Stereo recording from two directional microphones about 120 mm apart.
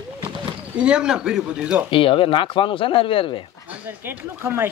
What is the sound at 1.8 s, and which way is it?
Speech, 45° left (ahead or behind).